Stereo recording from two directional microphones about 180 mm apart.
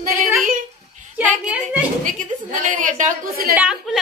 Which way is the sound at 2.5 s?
45° right (ahead or behind).